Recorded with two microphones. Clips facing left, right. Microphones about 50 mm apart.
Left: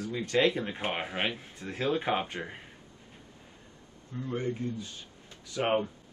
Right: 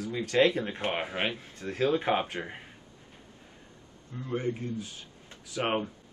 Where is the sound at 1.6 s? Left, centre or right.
Centre.